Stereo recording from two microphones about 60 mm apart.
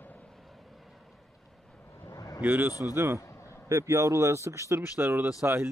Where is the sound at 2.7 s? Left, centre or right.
Left.